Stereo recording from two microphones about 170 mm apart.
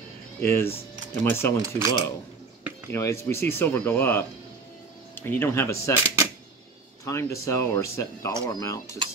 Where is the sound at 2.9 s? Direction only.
15° left (ahead or behind).